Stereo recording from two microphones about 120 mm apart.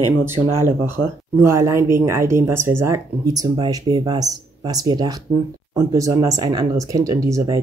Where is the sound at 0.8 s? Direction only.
20° right (ahead or behind).